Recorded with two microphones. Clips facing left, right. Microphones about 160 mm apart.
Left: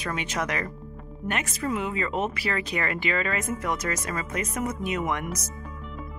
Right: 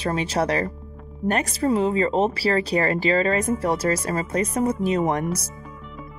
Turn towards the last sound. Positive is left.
turn(degrees=-35)  # may be behind; listen again after turning